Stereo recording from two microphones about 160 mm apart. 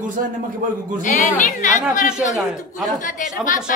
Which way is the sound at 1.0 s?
50° left (ahead or behind).